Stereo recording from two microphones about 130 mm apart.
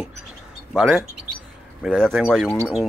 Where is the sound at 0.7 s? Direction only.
5° right (ahead or behind).